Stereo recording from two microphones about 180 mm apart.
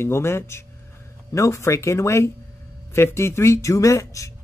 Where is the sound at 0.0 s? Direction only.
15° left (ahead or behind).